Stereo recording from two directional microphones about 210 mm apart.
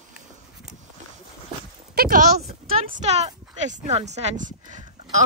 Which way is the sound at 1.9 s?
45° right (ahead or behind).